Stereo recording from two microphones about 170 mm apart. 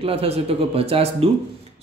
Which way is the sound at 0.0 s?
35° right (ahead or behind).